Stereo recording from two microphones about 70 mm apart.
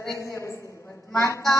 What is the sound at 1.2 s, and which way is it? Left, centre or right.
Speech, left.